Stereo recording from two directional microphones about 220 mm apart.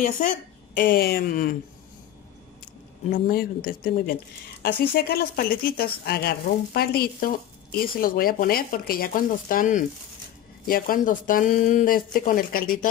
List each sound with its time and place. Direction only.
0.0 s speech: 35° left (ahead or behind)
3.1 s a woman's voice: 40° left (ahead or behind)